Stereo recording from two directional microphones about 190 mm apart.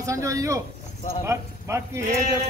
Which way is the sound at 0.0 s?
15° right (ahead or behind).